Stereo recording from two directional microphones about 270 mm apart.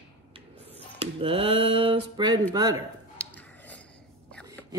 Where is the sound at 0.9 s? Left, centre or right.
Right.